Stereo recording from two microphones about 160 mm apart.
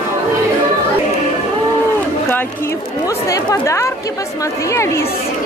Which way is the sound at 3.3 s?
20° left (ahead or behind).